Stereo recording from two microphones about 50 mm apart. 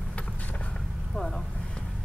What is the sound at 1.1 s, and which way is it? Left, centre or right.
Vehicle, centre.